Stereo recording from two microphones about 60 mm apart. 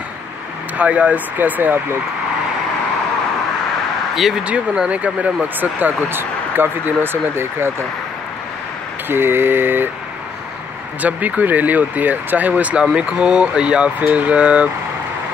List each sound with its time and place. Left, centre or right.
0.7 s speech: right
4.1 s speech: centre
4.4 s speech: centre; by 7.7 s right
9.1 s speech: right
11.0 s speech: right